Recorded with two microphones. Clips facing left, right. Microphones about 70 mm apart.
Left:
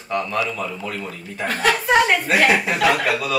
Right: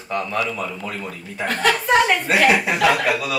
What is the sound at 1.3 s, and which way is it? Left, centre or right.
Speech, centre.